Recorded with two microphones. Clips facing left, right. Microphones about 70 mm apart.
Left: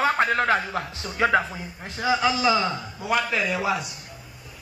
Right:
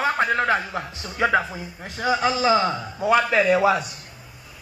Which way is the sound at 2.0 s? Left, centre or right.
Right.